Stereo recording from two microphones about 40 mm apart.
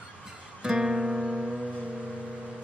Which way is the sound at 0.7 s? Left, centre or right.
Centre.